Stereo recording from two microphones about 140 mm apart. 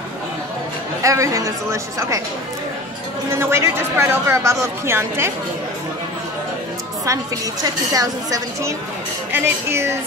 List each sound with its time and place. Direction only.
1.0 s speech: 20° right (ahead or behind)
3.3 s speech: 20° right (ahead or behind)
7.6 s speech: 25° right (ahead or behind)